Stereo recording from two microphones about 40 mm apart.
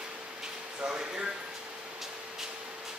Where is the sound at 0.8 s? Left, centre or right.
Right.